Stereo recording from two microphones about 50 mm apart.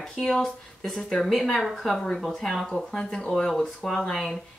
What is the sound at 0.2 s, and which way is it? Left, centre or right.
Speech, centre.